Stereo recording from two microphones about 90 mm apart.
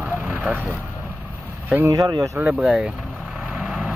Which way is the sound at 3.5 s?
5° right (ahead or behind).